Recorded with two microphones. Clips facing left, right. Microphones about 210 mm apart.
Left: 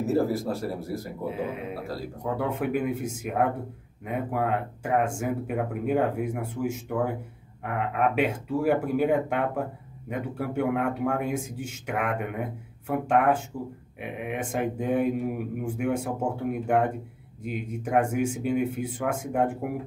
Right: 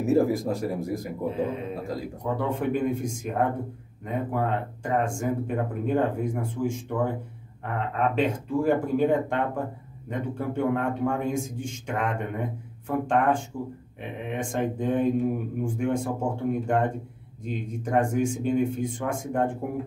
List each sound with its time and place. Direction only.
0.0 s speech: 15° right (ahead or behind)
1.2 s a man's voice: 10° left (ahead or behind)